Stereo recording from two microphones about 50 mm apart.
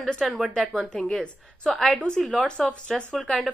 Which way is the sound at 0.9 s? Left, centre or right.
Centre.